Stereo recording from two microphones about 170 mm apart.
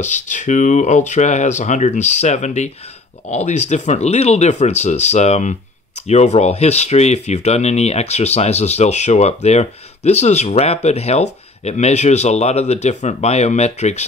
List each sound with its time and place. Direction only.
0.0 s speech: 45° left (ahead or behind)